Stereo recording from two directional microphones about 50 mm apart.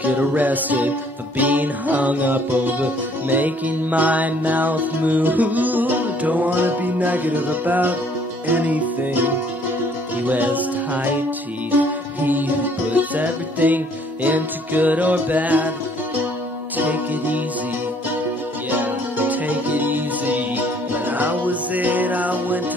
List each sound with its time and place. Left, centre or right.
0.0 s music: right
10.2 s music: right
16.7 s music: right
18.7 s music: right